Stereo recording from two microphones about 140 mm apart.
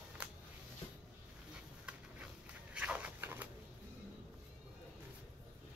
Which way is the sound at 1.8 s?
10° right (ahead or behind).